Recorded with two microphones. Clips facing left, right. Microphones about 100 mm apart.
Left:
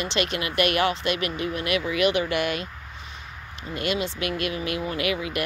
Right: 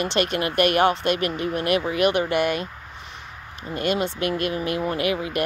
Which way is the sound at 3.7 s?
45° right (ahead or behind).